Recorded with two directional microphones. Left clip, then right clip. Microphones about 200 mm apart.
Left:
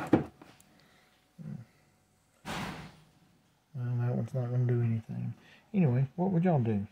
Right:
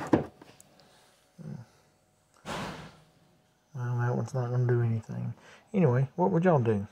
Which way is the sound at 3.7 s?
Centre (ahead or behind).